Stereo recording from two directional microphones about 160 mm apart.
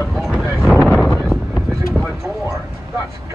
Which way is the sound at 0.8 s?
5° left (ahead or behind).